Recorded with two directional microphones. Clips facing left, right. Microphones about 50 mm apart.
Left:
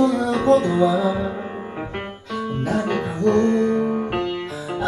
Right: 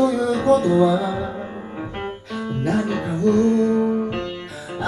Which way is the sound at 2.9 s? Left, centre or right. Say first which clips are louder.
Left 2 dB; left.